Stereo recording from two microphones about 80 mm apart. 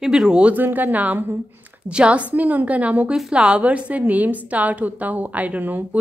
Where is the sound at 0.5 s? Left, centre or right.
Right.